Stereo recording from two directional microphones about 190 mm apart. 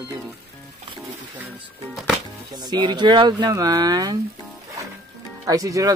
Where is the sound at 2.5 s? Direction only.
20° right (ahead or behind).